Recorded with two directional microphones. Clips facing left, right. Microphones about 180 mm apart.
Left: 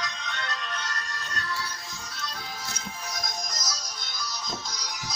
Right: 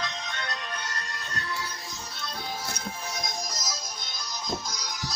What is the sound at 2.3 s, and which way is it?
Music, 30° right (ahead or behind).